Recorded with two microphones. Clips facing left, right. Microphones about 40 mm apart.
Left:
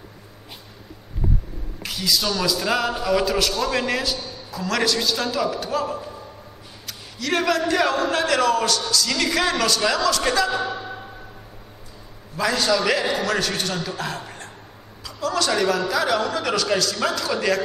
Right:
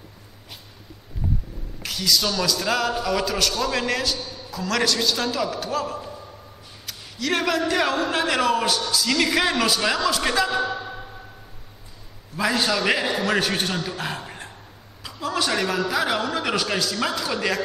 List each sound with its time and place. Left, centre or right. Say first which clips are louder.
1.8 s a man's voice: right 1 dB; centre
12.4 s a man's voice: left 1 dB; centre